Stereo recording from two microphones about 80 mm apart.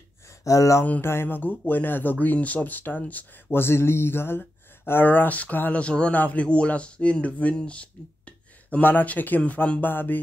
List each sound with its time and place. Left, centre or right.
0.4 s speech: left
0.8 s speech: left